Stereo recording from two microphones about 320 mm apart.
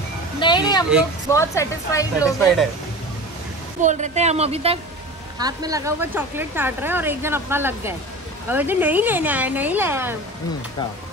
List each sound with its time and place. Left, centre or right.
0.4 s speech: centre
3.8 s a woman's voice: right